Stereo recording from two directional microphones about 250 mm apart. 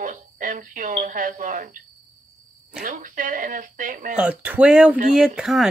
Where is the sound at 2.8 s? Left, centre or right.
Right.